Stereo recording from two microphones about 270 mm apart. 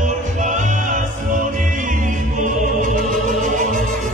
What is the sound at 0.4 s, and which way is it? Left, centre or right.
Music, right.